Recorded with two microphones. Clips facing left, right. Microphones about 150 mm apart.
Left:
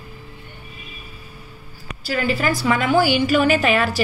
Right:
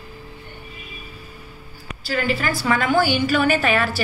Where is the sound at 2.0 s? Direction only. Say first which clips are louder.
Left 2 dB; centre (ahead or behind).